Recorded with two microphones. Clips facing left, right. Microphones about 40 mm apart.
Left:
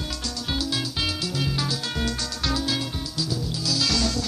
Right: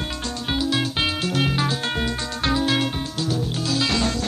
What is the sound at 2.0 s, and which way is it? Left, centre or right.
Music, right.